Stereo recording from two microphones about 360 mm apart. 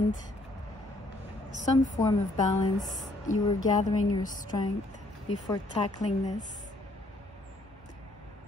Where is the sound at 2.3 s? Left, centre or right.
Centre.